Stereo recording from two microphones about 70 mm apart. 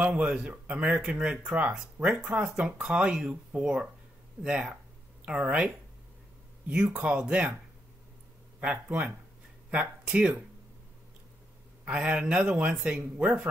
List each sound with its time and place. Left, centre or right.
0.0 s a man's voice: centre
6.7 s a man's voice: centre
8.5 s a man's voice: centre
11.8 s a man's voice: centre